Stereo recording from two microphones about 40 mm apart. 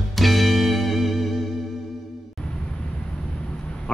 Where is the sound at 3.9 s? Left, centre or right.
Left.